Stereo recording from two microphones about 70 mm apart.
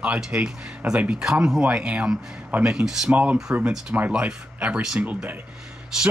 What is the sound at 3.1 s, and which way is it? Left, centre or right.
Speech, right.